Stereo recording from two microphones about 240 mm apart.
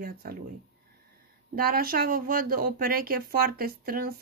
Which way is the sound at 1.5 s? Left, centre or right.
Right.